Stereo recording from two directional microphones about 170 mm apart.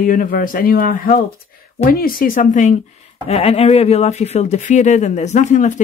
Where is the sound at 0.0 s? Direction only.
55° left (ahead or behind).